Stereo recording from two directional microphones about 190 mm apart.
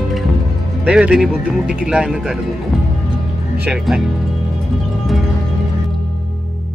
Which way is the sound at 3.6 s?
5° right (ahead or behind).